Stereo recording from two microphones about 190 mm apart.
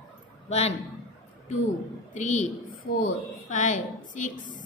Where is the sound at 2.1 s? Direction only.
40° left (ahead or behind).